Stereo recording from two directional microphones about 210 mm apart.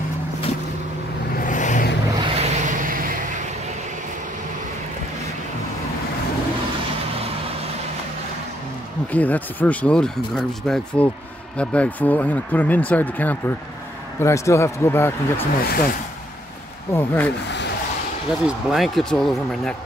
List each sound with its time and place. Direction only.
1.4 s vehicle: 35° left (ahead or behind)
2.2 s vehicle: 35° right (ahead or behind)
9.1 s speech: 10° left (ahead or behind)
15.6 s speech: 45° left (ahead or behind)
16.9 s speech: 10° left (ahead or behind)
17.5 s a sound: 55° left (ahead or behind)
18.5 s speech: centre (ahead or behind)